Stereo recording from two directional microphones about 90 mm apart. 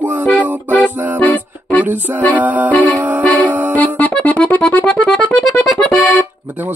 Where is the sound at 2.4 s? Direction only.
20° right (ahead or behind).